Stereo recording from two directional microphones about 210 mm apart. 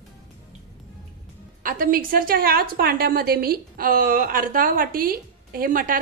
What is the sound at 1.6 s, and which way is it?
A woman's voice, 40° right (ahead or behind).